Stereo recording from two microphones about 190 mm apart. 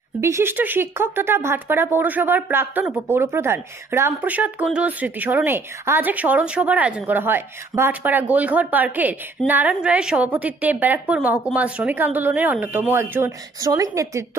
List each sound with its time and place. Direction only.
0.2 s speech: 15° right (ahead or behind)